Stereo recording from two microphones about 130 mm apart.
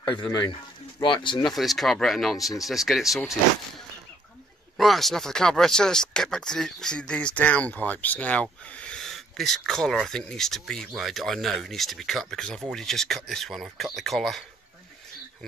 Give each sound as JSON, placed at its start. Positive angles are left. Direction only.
{"t": 0.0, "sound": "speech", "side_deg": 35}
{"t": 1.4, "sound": "speech", "side_deg": 0}
{"t": 4.7, "sound": "speech", "side_deg": 0}